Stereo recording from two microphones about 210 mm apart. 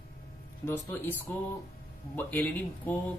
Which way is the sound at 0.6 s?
10° left (ahead or behind).